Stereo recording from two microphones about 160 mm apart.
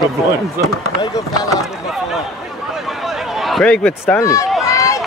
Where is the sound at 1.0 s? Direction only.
20° left (ahead or behind).